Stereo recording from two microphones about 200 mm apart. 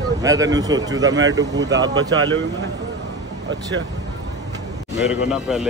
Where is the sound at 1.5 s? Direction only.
65° right (ahead or behind).